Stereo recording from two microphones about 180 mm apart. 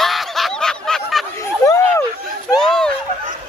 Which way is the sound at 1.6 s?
15° left (ahead or behind).